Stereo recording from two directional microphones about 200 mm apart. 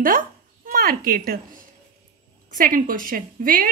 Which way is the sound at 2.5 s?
45° right (ahead or behind).